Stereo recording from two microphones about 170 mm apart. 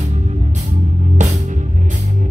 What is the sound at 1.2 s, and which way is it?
Music, 45° right (ahead or behind).